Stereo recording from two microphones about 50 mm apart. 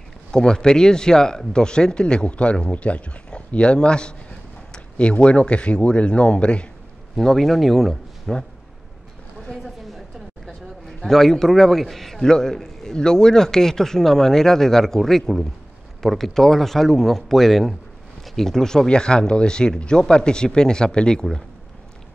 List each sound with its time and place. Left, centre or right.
0.3 s a man's voice: centre
7.2 s speech: centre
9.5 s a woman's voice: centre